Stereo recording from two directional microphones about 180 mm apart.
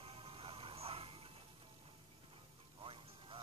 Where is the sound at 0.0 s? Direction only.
30° right (ahead or behind).